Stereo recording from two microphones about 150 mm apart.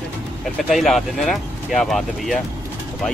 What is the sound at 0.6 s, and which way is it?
Speech, centre (ahead or behind).